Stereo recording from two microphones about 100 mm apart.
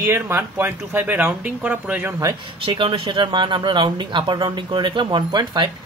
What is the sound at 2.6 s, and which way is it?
Speech, 65° right (ahead or behind).